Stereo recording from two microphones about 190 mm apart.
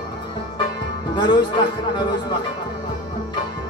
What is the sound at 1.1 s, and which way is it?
Speech, 25° left (ahead or behind).